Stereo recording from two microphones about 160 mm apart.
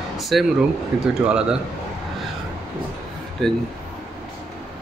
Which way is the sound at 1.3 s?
5° right (ahead or behind).